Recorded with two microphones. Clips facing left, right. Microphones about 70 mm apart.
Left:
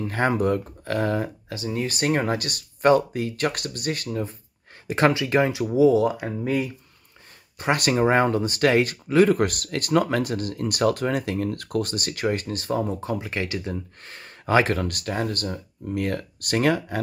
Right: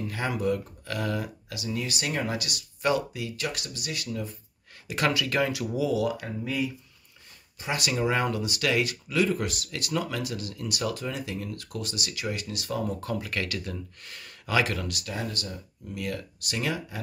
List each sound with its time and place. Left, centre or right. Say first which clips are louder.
0.0 s speech: left 6 dB; left
7.5 s speech: left 7 dB; left
9.3 s speech: left 8 dB; left